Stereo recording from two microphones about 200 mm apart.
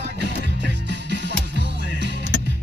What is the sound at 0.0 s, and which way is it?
Music, 60° right (ahead or behind).